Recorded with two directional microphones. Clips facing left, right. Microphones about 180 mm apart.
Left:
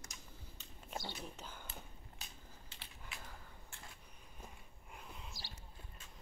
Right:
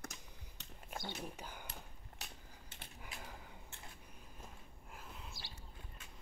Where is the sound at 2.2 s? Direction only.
50° right (ahead or behind).